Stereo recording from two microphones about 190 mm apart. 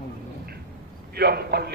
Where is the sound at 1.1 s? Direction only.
55° right (ahead or behind).